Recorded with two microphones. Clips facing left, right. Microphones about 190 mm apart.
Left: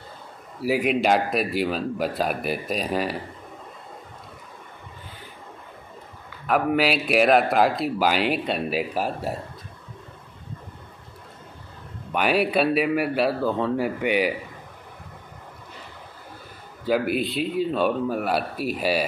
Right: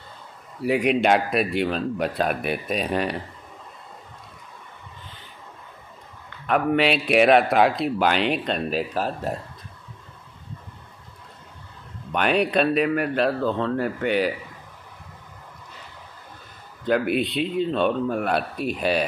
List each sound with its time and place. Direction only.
0.6 s speech: 5° left (ahead or behind)
6.4 s speech: 5° left (ahead or behind)
12.1 s a man's voice: 5° left (ahead or behind)
16.8 s speech: 5° left (ahead or behind)